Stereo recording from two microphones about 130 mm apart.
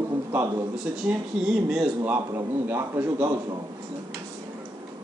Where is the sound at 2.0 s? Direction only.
20° right (ahead or behind).